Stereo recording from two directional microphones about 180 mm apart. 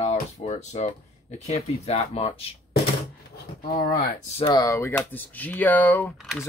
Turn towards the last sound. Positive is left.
turn(degrees=0)  # may be behind; listen again after turning